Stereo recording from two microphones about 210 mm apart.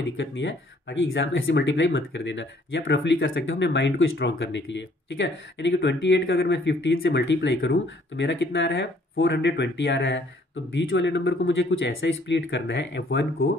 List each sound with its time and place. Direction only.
0.0 s speech: 60° left (ahead or behind)